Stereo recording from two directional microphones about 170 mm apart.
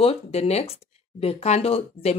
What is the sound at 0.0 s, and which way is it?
Speech, 35° left (ahead or behind).